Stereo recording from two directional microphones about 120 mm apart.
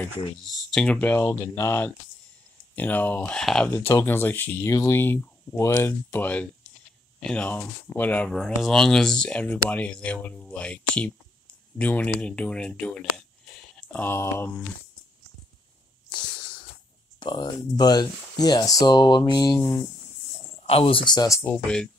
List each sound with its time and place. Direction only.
0.5 s speech: 5° left (ahead or behind)
1.4 s speech: 25° left (ahead or behind); by 3.7 s 5° left (ahead or behind)
3.7 s speech: 20° left (ahead or behind)
16.1 s a sound: 45° left (ahead or behind)
17.2 s speech: 35° left (ahead or behind)
20.5 s speech: 55° left (ahead or behind); by 21.3 s 40° left (ahead or behind)
21.3 s speech: 20° left (ahead or behind)